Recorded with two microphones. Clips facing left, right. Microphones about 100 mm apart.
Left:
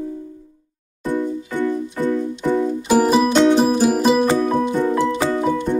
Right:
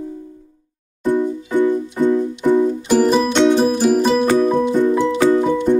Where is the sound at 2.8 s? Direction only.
10° left (ahead or behind).